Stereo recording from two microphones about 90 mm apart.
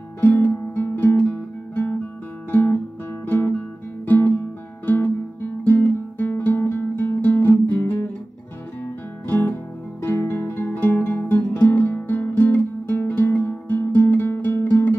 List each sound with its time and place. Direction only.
0.2 s music: 20° left (ahead or behind)
2.5 s music: 25° left (ahead or behind)
3.3 s guitar: 25° left (ahead or behind)
4.0 s music: 20° left (ahead or behind)
9.3 s music: 25° left (ahead or behind)